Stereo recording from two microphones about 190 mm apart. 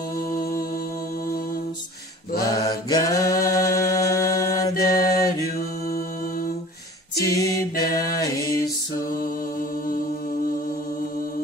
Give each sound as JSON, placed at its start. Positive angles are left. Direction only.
{"t": 0.3, "sound": "music", "side_deg": 50}
{"t": 2.4, "sound": "mantra", "side_deg": 20}
{"t": 3.4, "sound": "chant", "side_deg": 15}
{"t": 5.6, "sound": "mantra", "side_deg": 50}
{"t": 7.2, "sound": "music", "side_deg": 15}